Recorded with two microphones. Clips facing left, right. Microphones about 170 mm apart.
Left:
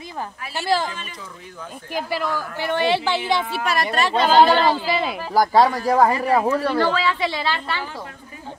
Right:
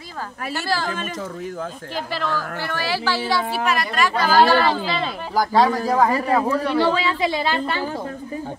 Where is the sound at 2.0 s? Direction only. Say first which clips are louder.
Left 1 dB; 10° left (ahead or behind).